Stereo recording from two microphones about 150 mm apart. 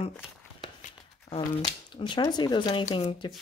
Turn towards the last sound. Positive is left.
turn(degrees=35)  # may be behind; listen again after turning